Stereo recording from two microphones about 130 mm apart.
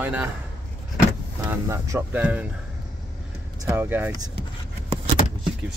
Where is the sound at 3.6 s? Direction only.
20° right (ahead or behind).